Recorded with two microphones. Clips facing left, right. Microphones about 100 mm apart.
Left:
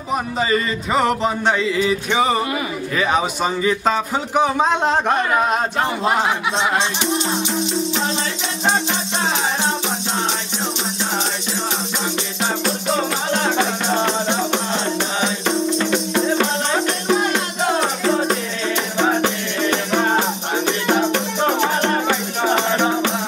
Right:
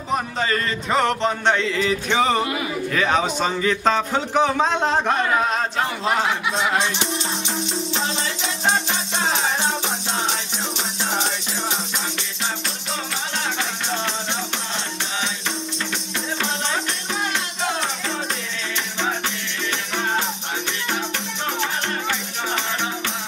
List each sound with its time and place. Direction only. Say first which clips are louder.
0.1 s a man's voice: left 3 dB; 5° left (ahead or behind); by 6.9 s 25° left (ahead or behind)
12.6 s music: left 9 dB; 45° left (ahead or behind)